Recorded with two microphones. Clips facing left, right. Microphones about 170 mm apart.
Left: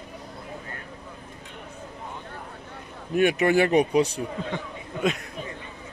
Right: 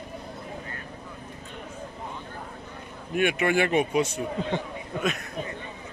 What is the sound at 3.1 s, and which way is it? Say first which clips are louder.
Speech: left 3 dB; 35° left (ahead or behind).